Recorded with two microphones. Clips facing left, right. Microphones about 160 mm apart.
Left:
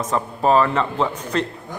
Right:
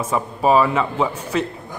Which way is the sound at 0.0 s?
10° right (ahead or behind).